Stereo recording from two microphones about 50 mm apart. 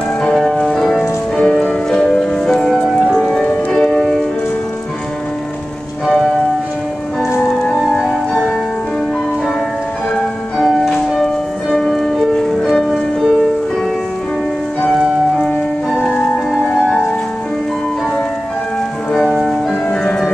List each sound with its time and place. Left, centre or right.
0.4 s music: centre
1.4 s music: centre
7.4 s music: centre
10.7 s music: centre
11.7 s music: centre
12.9 s music: centre
16.0 s music: centre
19.9 s music: centre